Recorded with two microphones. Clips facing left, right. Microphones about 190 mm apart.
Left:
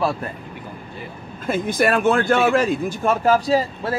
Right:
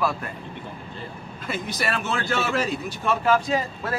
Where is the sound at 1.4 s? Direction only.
50° left (ahead or behind).